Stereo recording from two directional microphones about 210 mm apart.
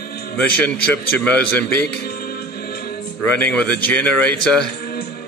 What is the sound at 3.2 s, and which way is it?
Speech, 5° left (ahead or behind).